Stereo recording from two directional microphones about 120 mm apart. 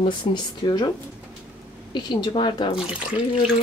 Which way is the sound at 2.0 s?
35° left (ahead or behind).